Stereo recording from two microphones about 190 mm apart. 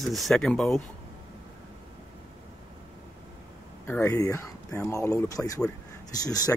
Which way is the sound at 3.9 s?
10° left (ahead or behind).